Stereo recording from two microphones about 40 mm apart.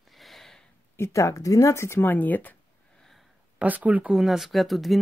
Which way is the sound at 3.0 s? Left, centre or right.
Centre.